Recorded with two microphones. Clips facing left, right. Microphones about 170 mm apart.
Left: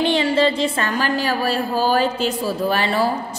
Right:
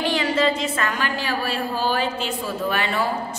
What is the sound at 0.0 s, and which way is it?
A woman's voice, 25° left (ahead or behind).